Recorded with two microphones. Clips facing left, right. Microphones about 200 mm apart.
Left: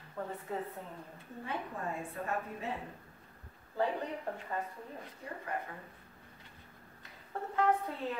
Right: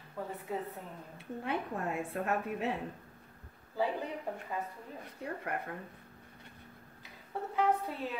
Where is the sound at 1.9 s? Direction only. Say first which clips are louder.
Right 5 dB; 80° right.